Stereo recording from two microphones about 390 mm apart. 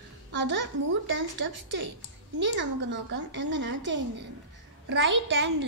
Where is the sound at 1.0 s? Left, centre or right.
Right.